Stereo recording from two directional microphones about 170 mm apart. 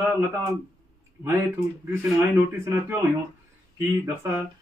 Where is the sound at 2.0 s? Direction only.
5° right (ahead or behind).